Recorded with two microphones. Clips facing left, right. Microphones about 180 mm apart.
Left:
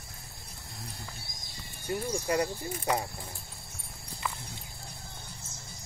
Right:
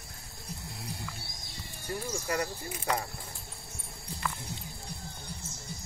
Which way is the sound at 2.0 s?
25° left (ahead or behind).